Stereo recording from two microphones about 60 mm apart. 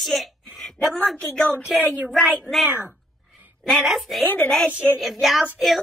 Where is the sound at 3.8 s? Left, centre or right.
Centre.